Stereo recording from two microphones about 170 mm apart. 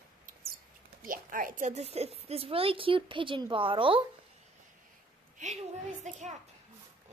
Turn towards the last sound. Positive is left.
turn(degrees=-45)  # may be behind; listen again after turning